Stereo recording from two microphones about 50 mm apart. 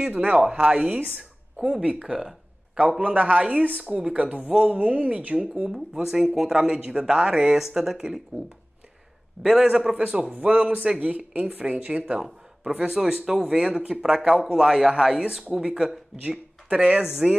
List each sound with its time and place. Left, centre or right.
0.1 s speech: right
1.6 s speech: centre
2.1 s a sound: centre
3.0 s speech: right
3.8 s speech: centre
4.1 s speech: right; by 8.2 s centre
9.4 s speech: centre; by 12.2 s right
12.8 s speech: centre